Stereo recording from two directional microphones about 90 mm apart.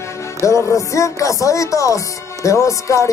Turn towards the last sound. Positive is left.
turn(degrees=35)  # may be behind; listen again after turning